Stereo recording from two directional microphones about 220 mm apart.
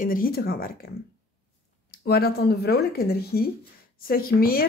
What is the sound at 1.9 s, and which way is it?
Speech, 45° left (ahead or behind).